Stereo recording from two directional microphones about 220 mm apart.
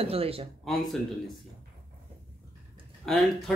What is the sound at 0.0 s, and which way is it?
Speech, 25° right (ahead or behind).